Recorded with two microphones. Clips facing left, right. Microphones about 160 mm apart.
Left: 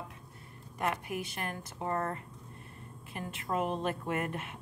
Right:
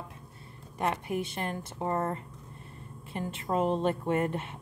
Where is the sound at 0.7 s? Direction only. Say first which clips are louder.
Right 4 dB; 30° right (ahead or behind).